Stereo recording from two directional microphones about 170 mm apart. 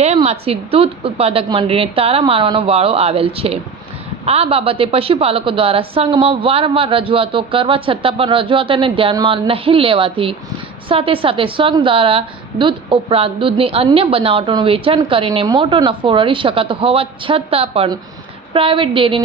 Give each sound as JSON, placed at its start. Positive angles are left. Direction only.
{"t": 0.0, "sound": "a woman's voice", "side_deg": -40}